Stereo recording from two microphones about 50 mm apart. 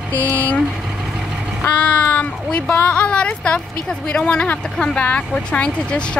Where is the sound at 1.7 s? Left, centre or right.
Left.